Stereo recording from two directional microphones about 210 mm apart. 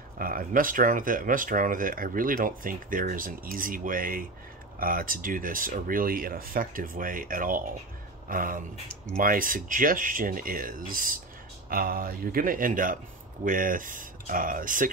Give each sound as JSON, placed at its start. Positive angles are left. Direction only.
{"t": 0.2, "sound": "speech", "side_deg": -45}